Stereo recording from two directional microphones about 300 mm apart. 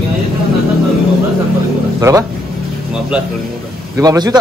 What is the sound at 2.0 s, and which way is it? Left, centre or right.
Speech, centre.